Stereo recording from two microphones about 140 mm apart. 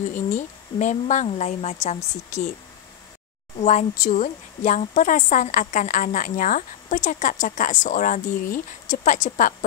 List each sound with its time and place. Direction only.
0.1 s speech: 60° left (ahead or behind)
3.5 s speech: 60° left (ahead or behind)